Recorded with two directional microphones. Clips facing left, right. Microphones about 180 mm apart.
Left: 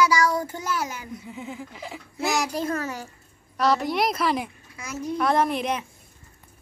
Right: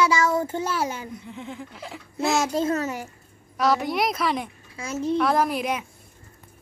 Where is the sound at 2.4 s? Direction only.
25° right (ahead or behind).